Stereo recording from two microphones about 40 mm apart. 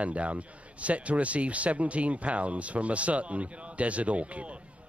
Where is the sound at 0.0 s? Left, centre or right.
Right.